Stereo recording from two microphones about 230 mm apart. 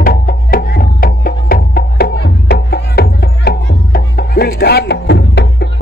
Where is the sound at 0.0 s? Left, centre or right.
Left.